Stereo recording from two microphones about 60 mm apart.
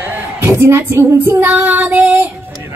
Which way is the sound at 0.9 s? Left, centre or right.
Right.